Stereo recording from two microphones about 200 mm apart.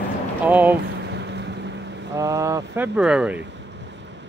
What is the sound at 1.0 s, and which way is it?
Boat, 60° right (ahead or behind).